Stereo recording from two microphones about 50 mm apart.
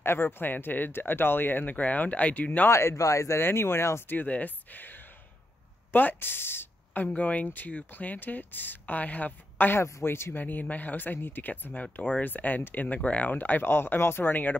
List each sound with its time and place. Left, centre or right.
0.0 s speech: left
2.7 s speech: left
3.3 s speech: left
4.3 s a woman's voice: left
7.2 s speech: left
9.8 s speech: left
10.0 s speech: left
10.3 s speech: left
11.7 s speech: left